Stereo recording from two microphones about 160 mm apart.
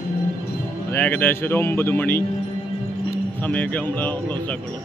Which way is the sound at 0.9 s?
10° left (ahead or behind).